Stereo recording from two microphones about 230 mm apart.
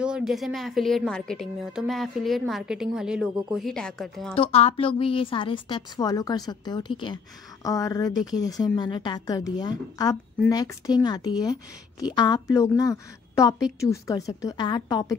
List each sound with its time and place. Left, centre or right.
0.0 s a woman's voice: centre
4.4 s a woman's voice: left